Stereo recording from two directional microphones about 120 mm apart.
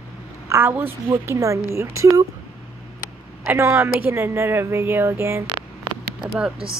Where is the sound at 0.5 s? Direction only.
20° right (ahead or behind).